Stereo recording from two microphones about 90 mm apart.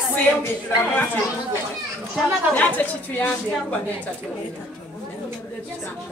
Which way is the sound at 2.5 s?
20° left (ahead or behind).